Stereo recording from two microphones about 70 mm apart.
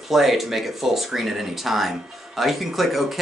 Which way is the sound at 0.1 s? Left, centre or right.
Centre.